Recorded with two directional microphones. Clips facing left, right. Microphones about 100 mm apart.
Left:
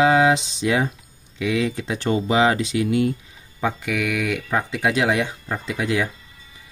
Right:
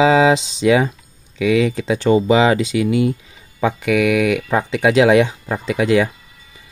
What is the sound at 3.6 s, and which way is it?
Speech, 85° right.